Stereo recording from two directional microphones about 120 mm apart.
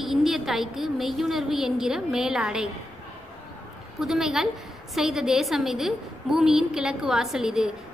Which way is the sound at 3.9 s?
5° right (ahead or behind).